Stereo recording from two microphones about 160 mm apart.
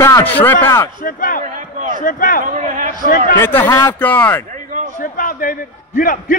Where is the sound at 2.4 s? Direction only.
55° right (ahead or behind).